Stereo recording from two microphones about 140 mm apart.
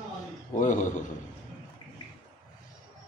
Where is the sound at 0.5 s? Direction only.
65° left (ahead or behind).